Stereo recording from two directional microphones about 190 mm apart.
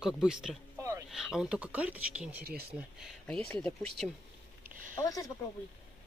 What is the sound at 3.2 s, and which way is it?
Speech, 5° left (ahead or behind).